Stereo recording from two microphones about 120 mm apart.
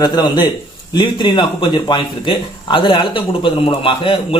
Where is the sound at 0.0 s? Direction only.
35° left (ahead or behind).